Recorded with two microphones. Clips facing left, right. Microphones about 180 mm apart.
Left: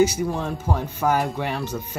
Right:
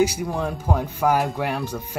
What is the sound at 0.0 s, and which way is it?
Speech, 5° right (ahead or behind).